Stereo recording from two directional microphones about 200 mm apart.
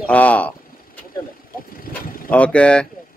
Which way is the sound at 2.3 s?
5° left (ahead or behind).